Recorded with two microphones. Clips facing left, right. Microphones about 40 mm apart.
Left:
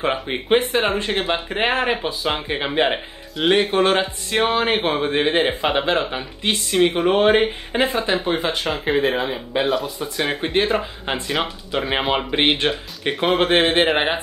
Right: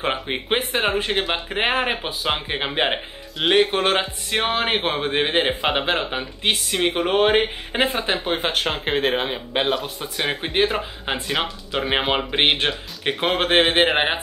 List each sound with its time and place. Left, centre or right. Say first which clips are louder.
0.0 s speech: left 2 dB; centre
8.5 s speech: left 1 dB; right
10.3 s speech: left 1 dB; centre